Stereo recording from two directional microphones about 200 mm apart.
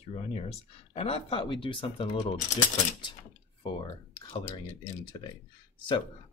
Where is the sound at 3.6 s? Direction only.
25° left (ahead or behind).